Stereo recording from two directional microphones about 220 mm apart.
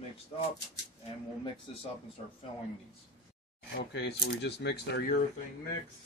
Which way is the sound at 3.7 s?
45° left (ahead or behind).